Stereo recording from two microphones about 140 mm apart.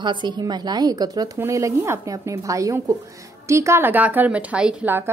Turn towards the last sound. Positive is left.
turn(degrees=-15)  # may be behind; listen again after turning